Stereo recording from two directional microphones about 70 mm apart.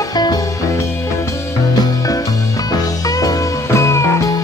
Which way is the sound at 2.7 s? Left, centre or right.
Left.